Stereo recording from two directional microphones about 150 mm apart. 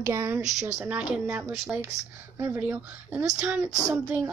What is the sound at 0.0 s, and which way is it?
Speech, 20° right (ahead or behind).